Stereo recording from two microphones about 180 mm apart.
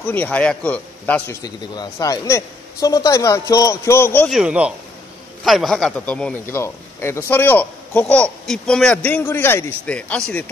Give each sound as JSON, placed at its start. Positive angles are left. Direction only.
{"t": 0.0, "sound": "a man's voice", "side_deg": 10}
{"t": 4.3, "sound": "a man's voice", "side_deg": -5}